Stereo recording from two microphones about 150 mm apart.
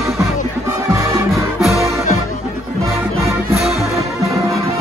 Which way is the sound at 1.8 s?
20° right (ahead or behind).